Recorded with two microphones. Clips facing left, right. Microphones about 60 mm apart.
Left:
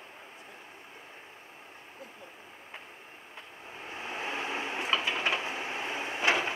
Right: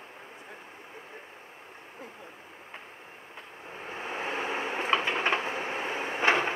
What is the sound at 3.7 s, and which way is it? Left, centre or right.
Vehicle, centre.